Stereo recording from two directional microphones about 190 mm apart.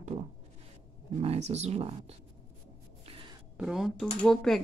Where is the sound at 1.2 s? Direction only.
35° right (ahead or behind).